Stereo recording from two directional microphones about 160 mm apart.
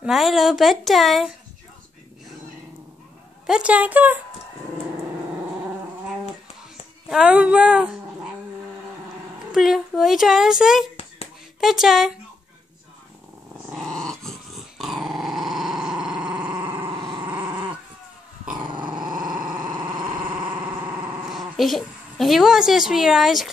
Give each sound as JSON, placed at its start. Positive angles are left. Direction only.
{"t": 0.0, "sound": "speech", "side_deg": 0}
{"t": 3.4, "sound": "a woman's voice", "side_deg": -5}
{"t": 7.1, "sound": "speech", "side_deg": -5}
{"t": 9.5, "sound": "speech", "side_deg": 0}
{"t": 13.8, "sound": "dog", "side_deg": 5}
{"t": 16.3, "sound": "dog", "side_deg": -30}
{"t": 16.6, "sound": "dog", "side_deg": -15}
{"t": 18.5, "sound": "dog", "side_deg": -30}
{"t": 20.3, "sound": "dog", "side_deg": -5}